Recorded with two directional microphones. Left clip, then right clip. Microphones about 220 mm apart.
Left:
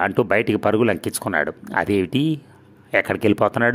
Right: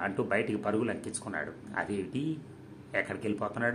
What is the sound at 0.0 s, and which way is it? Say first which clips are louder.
Speech: left 12 dB; 50° left (ahead or behind).